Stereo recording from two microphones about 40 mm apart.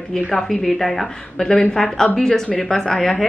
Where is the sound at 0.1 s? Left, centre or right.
Centre.